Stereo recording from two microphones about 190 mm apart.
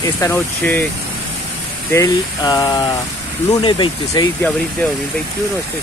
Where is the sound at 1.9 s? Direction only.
15° left (ahead or behind).